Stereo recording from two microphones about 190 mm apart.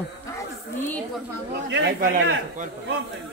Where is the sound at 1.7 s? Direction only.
65° right (ahead or behind).